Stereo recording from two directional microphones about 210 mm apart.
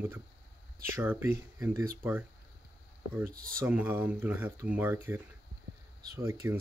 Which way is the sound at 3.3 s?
45° right (ahead or behind).